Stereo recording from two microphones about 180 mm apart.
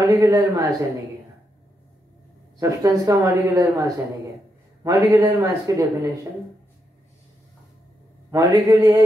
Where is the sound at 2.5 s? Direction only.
15° right (ahead or behind).